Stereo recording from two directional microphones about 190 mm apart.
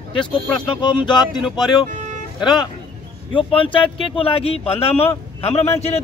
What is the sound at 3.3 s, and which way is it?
A man's voice, 30° left (ahead or behind).